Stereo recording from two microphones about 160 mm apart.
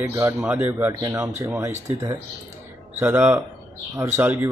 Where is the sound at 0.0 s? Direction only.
15° right (ahead or behind).